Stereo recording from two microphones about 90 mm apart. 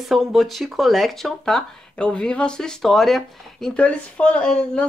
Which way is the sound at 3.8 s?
15° left (ahead or behind).